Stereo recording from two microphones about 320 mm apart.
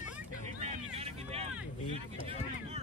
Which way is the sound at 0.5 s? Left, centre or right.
Centre.